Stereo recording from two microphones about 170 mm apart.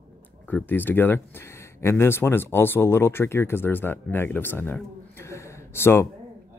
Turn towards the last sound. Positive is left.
turn(degrees=15)  # may be behind; listen again after turning